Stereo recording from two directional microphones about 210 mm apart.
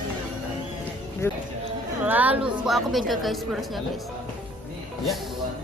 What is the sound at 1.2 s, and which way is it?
Speech, 15° left (ahead or behind).